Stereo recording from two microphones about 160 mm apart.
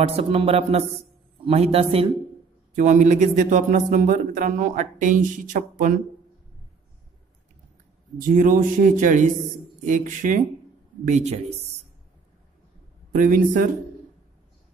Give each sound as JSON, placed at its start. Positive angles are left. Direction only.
{"t": 0.0, "sound": "a sound", "side_deg": -35}
{"t": 2.7, "sound": "speech", "side_deg": -50}
{"t": 8.2, "sound": "a man's voice", "side_deg": -55}
{"t": 13.1, "sound": "a man's voice", "side_deg": -60}